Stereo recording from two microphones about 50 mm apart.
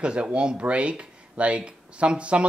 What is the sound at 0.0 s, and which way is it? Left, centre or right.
Speech, right.